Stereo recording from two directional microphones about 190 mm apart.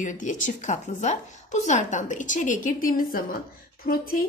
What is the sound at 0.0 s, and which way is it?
A woman's voice, 40° left (ahead or behind).